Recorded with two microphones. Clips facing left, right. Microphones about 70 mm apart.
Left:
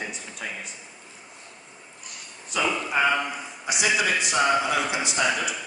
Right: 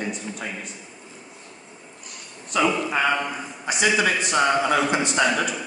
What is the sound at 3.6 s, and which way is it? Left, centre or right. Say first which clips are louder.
A man's voice: right 3 dB; right.